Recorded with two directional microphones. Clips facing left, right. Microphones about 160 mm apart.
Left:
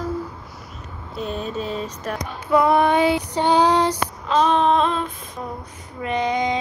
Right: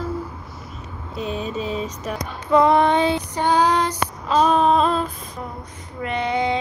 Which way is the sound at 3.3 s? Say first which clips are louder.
Left 1 dB; 20° left (ahead or behind).